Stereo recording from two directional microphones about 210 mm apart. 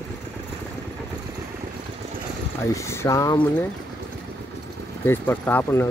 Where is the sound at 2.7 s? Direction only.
15° left (ahead or behind).